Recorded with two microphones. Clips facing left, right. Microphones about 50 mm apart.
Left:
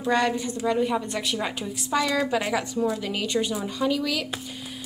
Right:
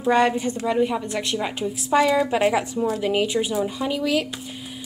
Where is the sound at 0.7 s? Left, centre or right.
Centre.